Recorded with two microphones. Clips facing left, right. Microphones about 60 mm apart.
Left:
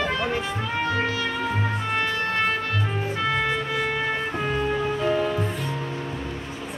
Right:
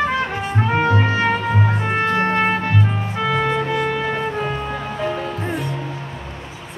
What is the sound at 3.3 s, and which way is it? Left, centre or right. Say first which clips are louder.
Music: right 5 dB; centre.